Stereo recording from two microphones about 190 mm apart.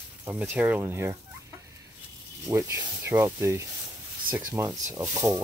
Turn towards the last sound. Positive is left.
turn(degrees=-15)  # may be behind; listen again after turning